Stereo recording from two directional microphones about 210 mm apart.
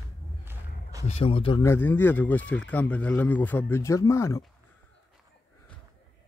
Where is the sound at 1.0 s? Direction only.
30° left (ahead or behind).